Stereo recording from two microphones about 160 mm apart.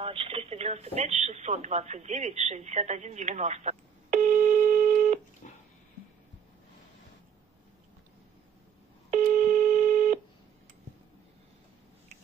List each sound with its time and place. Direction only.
0.0 s speech: 35° right (ahead or behind); by 5.2 s 55° right (ahead or behind)
9.1 s telephone: 50° right (ahead or behind)